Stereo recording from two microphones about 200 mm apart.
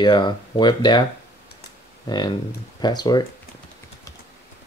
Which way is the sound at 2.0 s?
20° left (ahead or behind).